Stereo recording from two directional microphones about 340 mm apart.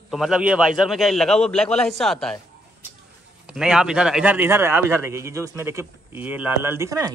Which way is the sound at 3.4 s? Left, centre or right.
Centre.